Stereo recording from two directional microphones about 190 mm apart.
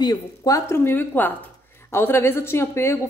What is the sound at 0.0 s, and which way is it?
A woman's voice, 20° left (ahead or behind).